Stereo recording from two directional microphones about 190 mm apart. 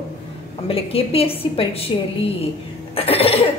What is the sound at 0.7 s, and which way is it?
A woman's voice, 30° left (ahead or behind).